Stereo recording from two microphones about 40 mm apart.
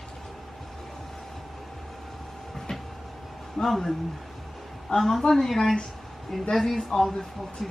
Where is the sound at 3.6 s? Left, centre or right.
Centre.